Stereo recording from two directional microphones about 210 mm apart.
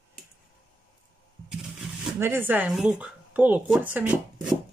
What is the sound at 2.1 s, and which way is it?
Speech, 10° right (ahead or behind).